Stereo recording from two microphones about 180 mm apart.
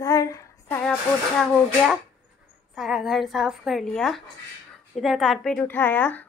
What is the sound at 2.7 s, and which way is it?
Speech, centre (ahead or behind).